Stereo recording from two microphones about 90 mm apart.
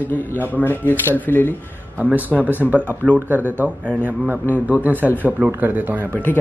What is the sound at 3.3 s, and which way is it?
Speech, 20° right (ahead or behind).